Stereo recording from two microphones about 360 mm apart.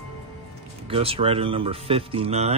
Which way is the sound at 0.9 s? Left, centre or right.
Centre.